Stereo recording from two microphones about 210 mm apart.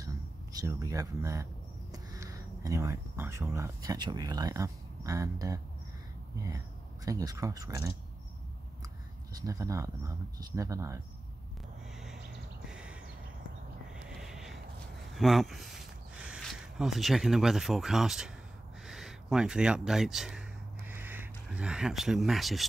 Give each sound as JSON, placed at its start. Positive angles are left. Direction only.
{"t": 0.0, "sound": "speech", "side_deg": -15}
{"t": 7.1, "sound": "speech", "side_deg": -15}
{"t": 9.3, "sound": "speech", "side_deg": -15}
{"t": 14.0, "sound": "a sound", "side_deg": 0}
{"t": 15.1, "sound": "speech", "side_deg": 0}
{"t": 18.9, "sound": "a sound", "side_deg": 0}